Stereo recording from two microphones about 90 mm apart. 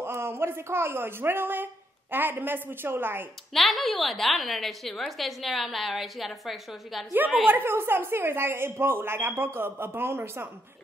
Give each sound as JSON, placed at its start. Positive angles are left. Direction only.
{"t": 0.0, "sound": "a woman's voice", "side_deg": -25}
{"t": 3.5, "sound": "a woman's voice", "side_deg": 0}
{"t": 7.2, "sound": "a woman's voice", "side_deg": -20}